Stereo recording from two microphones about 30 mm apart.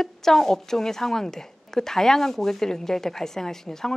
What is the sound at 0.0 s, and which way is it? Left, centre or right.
A woman's voice, centre.